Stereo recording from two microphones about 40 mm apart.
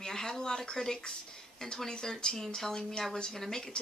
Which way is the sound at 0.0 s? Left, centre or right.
Centre.